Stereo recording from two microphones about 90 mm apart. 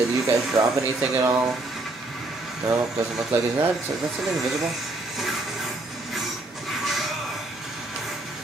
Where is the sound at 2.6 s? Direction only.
40° right (ahead or behind).